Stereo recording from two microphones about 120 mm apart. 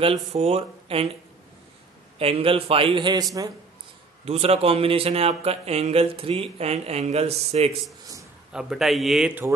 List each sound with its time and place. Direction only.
0.0 s a man's voice: 60° right (ahead or behind)
2.1 s a man's voice: 55° right (ahead or behind)
4.2 s a man's voice: 60° right (ahead or behind)
8.5 s a man's voice: 5° right (ahead or behind)